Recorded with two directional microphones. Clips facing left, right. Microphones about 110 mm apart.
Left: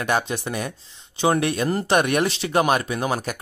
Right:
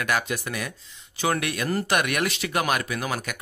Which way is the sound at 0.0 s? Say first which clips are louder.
Left 3 dB; 30° left (ahead or behind).